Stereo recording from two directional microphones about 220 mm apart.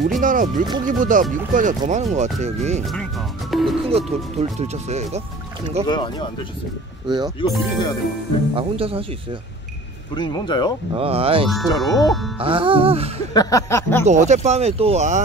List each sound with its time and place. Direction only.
0.2 s speech: 35° right (ahead or behind)
3.5 s speech: centre (ahead or behind)
3.9 s speech: 30° right (ahead or behind)
5.9 s speech: 20° left (ahead or behind)
7.1 s speech: 20° right (ahead or behind)
7.3 s a sound: 15° left (ahead or behind)
8.5 s speech: 25° right (ahead or behind)
10.1 s speech: 20° left (ahead or behind)
11.0 s speech: 25° right (ahead or behind)
11.4 s speech: centre (ahead or behind)
12.4 s speech: 25° right (ahead or behind)
13.3 s a sound: 15° left (ahead or behind)
14.0 s speech: 30° right (ahead or behind)